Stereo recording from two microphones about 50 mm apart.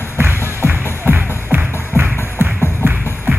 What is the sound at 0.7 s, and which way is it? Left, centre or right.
Music, right.